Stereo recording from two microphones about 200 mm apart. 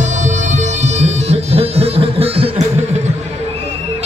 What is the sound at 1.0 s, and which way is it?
Music, 30° right (ahead or behind).